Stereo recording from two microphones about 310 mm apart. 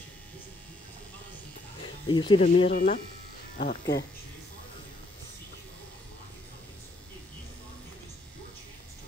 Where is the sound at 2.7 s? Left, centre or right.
Left.